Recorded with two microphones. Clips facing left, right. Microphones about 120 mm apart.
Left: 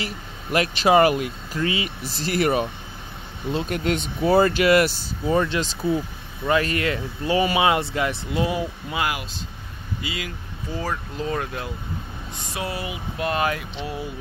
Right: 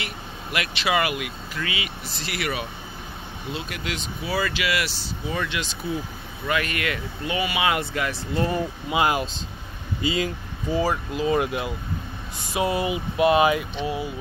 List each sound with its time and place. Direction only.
0.0 s speech: 40° left (ahead or behind); by 8.2 s 25° left (ahead or behind)
8.4 s speech: 10° left (ahead or behind)
8.9 s speech: 25° right (ahead or behind)
10.7 s speech: 10° right (ahead or behind)
12.5 s speech: 20° right (ahead or behind)
13.3 s speech: 5° right (ahead or behind)